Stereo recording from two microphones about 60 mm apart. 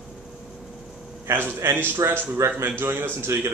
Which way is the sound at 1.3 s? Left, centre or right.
Right.